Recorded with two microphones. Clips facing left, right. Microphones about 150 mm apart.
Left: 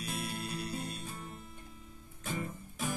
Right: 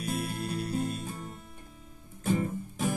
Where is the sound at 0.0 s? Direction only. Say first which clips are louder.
Right 6 dB; 50° right (ahead or behind).